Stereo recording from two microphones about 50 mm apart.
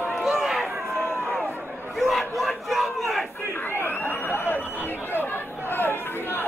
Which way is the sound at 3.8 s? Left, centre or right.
Left.